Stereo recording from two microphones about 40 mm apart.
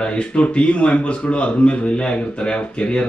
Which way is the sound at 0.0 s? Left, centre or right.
Left.